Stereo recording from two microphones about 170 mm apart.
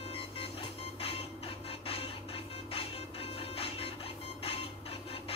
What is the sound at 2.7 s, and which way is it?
Music, 35° left (ahead or behind).